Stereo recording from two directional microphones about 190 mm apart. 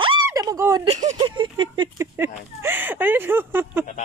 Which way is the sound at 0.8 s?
35° right (ahead or behind).